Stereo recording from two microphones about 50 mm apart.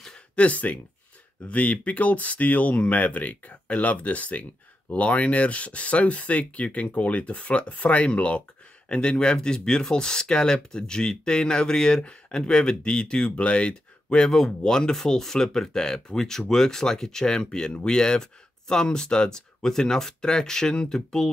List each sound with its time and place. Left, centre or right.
0.4 s speech: left
14.0 s speech: centre